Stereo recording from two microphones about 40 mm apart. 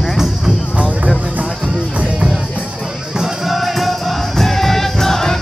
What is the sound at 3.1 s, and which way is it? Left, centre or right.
Music, centre.